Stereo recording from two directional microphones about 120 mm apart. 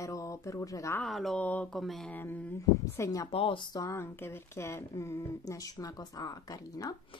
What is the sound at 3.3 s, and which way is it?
A woman's voice, 45° left (ahead or behind).